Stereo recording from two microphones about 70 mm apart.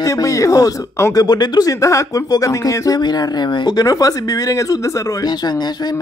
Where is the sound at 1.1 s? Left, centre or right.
Left.